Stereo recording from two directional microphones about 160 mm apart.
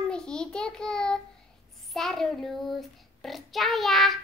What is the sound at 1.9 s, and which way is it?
Child singing, centre (ahead or behind).